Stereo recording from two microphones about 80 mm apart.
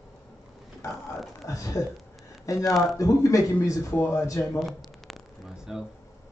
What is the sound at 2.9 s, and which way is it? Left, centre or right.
Speech, left.